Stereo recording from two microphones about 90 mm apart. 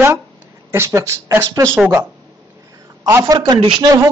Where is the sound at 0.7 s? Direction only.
30° right (ahead or behind).